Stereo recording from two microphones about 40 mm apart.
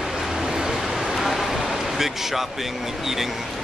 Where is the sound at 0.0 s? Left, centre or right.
Centre.